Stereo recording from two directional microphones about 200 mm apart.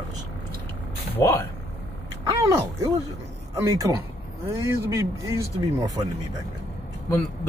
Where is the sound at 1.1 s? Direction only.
15° left (ahead or behind).